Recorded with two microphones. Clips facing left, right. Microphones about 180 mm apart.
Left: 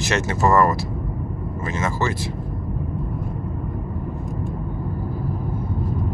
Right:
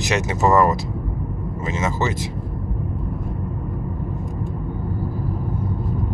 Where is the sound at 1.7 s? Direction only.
20° right (ahead or behind).